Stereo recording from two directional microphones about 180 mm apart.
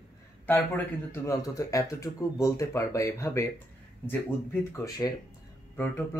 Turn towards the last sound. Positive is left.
turn(degrees=10)  # may be behind; listen again after turning